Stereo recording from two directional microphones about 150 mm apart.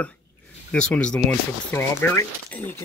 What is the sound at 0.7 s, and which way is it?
Speech, 5° left (ahead or behind).